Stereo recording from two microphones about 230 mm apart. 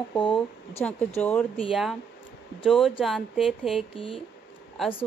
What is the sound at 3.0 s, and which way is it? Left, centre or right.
Speech, centre.